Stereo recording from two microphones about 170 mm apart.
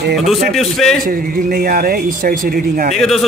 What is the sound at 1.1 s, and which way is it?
Speech, 60° right (ahead or behind).